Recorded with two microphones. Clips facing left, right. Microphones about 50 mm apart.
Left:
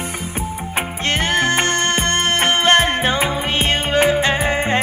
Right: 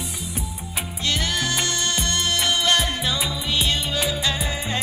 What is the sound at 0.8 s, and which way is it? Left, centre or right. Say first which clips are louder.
Music: left 5 dB; left.